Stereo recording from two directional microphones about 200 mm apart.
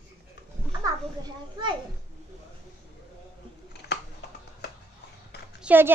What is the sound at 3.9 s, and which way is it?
Music, 55° left (ahead or behind).